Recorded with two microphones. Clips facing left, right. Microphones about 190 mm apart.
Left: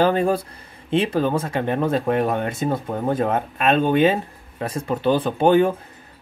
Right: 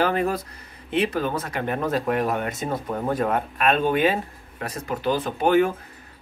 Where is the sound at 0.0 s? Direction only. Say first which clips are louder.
Left 4 dB; 30° left (ahead or behind).